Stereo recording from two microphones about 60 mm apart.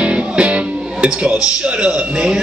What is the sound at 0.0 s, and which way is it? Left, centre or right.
Music, centre.